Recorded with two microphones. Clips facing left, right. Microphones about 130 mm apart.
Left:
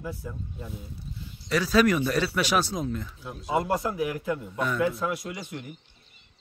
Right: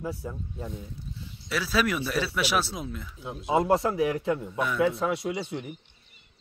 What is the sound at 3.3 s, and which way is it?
A man's voice, 20° right (ahead or behind).